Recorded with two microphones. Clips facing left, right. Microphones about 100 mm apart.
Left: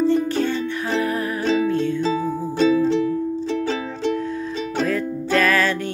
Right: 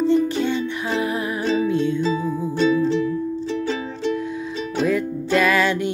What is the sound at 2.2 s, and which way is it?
Music, 30° left (ahead or behind).